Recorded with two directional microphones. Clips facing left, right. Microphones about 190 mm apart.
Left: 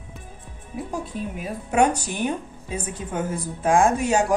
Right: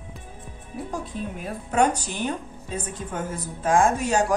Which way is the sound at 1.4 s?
10° left (ahead or behind).